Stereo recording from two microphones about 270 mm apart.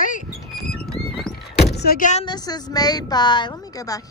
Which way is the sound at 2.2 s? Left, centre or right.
Centre.